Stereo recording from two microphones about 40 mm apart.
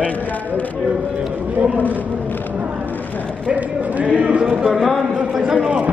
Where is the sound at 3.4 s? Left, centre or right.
Right.